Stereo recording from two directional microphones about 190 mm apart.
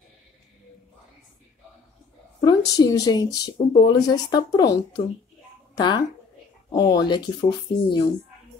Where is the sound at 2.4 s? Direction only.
20° left (ahead or behind).